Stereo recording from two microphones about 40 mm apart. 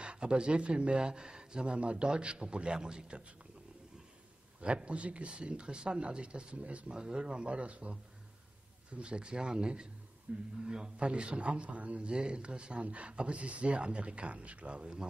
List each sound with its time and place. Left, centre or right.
0.0 s a man's voice: right
4.6 s a man's voice: right
6.9 s a man's voice: right
8.9 s a man's voice: right
10.6 s a man's voice: right